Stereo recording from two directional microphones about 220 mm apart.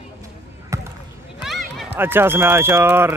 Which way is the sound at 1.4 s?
Centre (ahead or behind).